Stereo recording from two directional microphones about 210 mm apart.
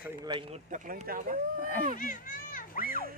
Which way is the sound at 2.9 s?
45° right (ahead or behind).